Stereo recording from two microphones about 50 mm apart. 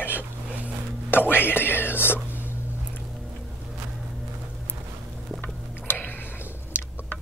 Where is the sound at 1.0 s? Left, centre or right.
Left.